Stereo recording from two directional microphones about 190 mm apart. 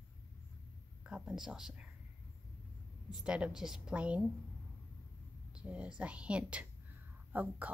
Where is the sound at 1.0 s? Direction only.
5° right (ahead or behind).